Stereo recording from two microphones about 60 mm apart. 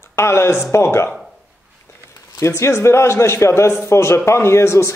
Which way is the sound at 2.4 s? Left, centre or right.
Left.